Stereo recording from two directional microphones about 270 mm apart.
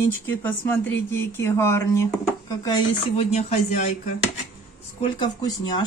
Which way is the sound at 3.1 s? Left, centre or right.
Left.